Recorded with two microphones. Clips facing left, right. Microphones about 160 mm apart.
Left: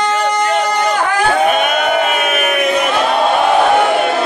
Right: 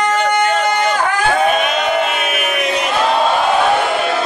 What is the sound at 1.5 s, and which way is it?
Choir, 50° left (ahead or behind).